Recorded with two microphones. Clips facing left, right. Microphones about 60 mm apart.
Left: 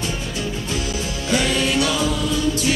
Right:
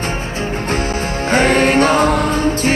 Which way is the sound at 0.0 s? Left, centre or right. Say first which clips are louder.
Right 5 dB; right.